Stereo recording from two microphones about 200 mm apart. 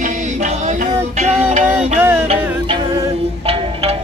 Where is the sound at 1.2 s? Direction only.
35° right (ahead or behind).